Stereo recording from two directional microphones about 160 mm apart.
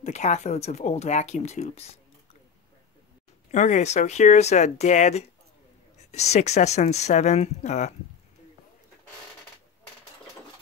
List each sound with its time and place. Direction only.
0.0 s speech: 45° left (ahead or behind)
3.5 s speech: 50° left (ahead or behind)